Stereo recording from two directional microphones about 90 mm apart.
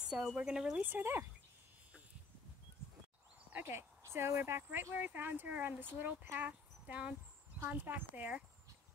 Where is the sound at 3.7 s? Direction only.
30° right (ahead or behind).